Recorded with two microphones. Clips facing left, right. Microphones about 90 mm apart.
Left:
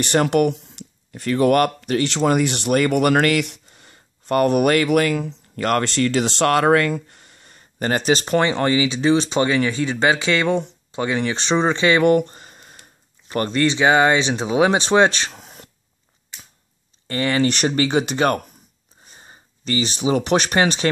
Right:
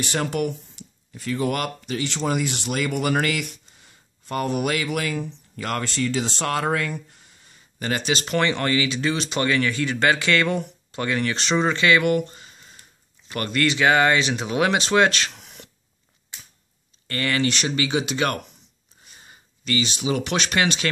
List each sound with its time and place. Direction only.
0.0 s speech: 60° left (ahead or behind); by 12.0 s 25° left (ahead or behind)
12.0 s a sound: 40° left (ahead or behind)
13.3 s speech: 30° left (ahead or behind)
17.1 s speech: 25° left (ahead or behind)
17.6 s speech: 45° left (ahead or behind)